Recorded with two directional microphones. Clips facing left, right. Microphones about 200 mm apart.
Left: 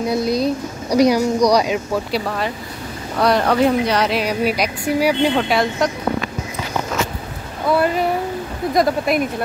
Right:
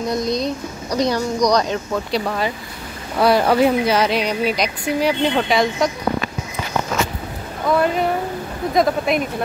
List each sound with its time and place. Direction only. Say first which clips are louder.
0.0 s speech: left 3 dB; 5° left (ahead or behind)
2.2 s a woman's voice: right 1 dB; centre (ahead or behind)
8.7 s a woman's voice: even; centre (ahead or behind)